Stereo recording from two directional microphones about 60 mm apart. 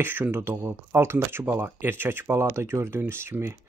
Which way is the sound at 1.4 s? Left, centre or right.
Right.